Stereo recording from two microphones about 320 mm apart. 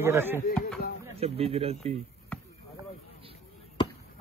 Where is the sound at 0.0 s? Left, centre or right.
Centre.